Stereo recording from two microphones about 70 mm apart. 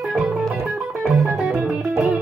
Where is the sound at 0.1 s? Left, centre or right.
Centre.